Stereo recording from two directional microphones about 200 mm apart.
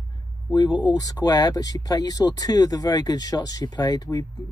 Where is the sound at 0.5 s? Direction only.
20° left (ahead or behind).